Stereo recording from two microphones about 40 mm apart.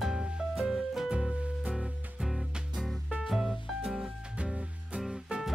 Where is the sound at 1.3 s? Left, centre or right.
Right.